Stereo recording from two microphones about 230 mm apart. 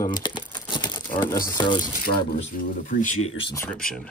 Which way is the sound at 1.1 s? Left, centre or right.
Centre.